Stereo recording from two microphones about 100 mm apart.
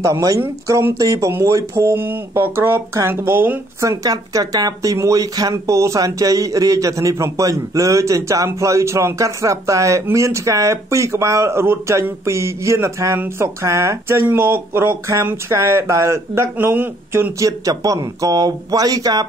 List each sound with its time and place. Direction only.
0.0 s speech: 35° right (ahead or behind)
4.0 s speech: 40° right (ahead or behind); by 17.3 s 20° right (ahead or behind)
17.4 s speech: 35° right (ahead or behind)